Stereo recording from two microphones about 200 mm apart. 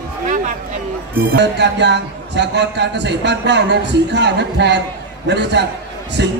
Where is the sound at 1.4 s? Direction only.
60° right (ahead or behind).